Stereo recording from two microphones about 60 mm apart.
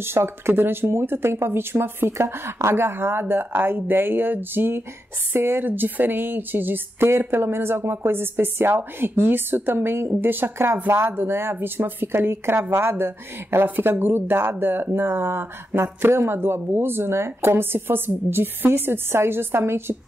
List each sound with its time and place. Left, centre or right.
0.0 s speech: right